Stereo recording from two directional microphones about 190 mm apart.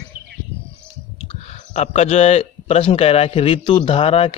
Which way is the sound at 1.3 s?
35° left (ahead or behind).